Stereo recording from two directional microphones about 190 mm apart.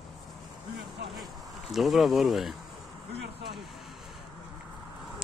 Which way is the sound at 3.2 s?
65° right (ahead or behind).